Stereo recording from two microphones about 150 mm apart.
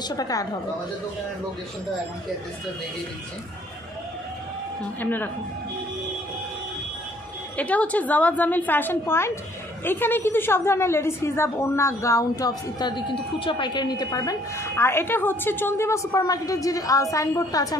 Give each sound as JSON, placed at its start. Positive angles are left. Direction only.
{"t": 0.1, "sound": "a woman's voice", "side_deg": 25}
{"t": 5.0, "sound": "a woman's voice", "side_deg": 10}
{"t": 7.5, "sound": "a woman's voice", "side_deg": 10}